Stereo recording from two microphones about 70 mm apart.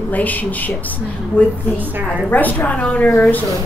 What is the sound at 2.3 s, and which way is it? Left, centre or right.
Speech, left.